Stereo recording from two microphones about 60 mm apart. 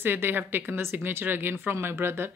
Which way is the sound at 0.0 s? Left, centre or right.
Right.